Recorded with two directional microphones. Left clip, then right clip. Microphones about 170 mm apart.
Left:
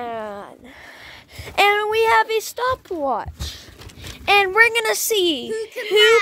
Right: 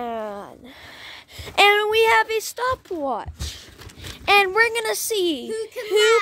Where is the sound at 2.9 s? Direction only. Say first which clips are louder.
Left 3 dB; centre (ahead or behind).